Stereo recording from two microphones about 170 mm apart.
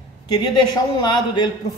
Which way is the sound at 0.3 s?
25° left (ahead or behind).